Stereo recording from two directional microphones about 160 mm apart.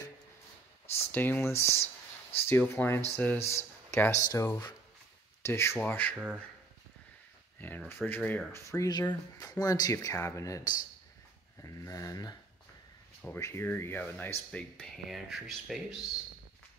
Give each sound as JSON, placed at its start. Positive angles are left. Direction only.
{"t": 0.9, "sound": "speech", "side_deg": 10}
{"t": 6.1, "sound": "speech", "side_deg": -10}
{"t": 7.6, "sound": "speech", "side_deg": 10}